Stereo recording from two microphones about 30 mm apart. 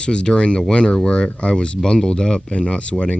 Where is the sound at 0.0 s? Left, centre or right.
Left.